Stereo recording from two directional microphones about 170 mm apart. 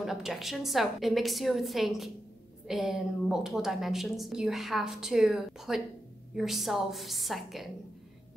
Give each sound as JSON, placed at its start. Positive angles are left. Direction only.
{"t": 0.0, "sound": "a woman's voice", "side_deg": 0}